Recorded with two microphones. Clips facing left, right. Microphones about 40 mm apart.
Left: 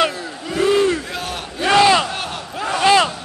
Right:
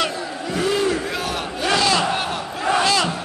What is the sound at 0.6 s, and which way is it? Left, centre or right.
Battle cry, centre.